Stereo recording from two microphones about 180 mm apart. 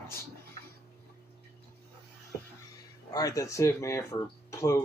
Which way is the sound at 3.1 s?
20° left (ahead or behind).